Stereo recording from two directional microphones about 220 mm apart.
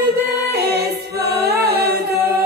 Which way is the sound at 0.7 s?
50° right (ahead or behind).